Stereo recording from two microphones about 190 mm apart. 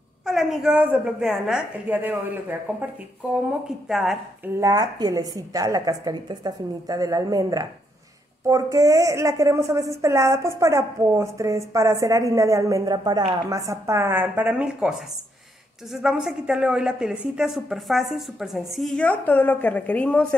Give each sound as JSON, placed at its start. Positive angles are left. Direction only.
{"t": 0.2, "sound": "a woman's voice", "side_deg": 0}
{"t": 4.6, "sound": "a woman's voice", "side_deg": -20}